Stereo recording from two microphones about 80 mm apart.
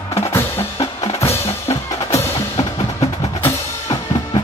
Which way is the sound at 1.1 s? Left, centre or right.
Left.